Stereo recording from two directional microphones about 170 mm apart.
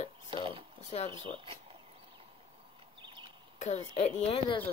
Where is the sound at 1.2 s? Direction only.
30° right (ahead or behind).